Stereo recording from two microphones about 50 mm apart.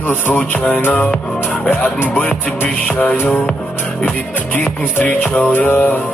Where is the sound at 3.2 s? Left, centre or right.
Left.